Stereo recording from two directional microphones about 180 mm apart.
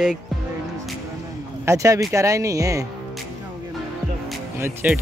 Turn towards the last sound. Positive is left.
turn(degrees=-15)  # may be behind; listen again after turning